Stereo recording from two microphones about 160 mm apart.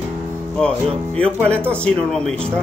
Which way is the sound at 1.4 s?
5° left (ahead or behind).